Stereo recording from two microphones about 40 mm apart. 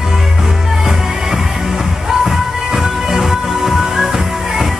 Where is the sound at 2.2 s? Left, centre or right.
Centre.